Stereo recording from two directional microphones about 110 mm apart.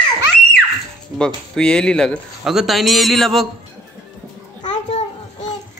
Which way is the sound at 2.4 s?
Centre (ahead or behind).